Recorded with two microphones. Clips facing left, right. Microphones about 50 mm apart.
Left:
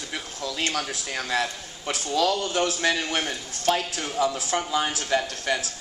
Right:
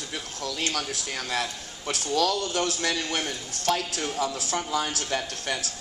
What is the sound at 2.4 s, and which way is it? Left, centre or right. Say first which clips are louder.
A man's voice: left 3 dB; left.